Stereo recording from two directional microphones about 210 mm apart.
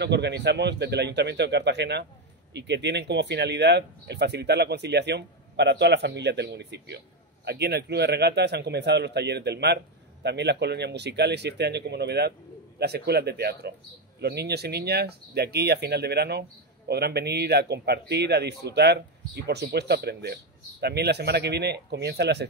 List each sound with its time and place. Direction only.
0.0 s speech: 55° right (ahead or behind)